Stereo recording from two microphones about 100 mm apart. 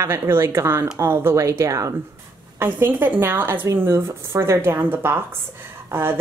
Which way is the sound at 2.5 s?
20° right (ahead or behind).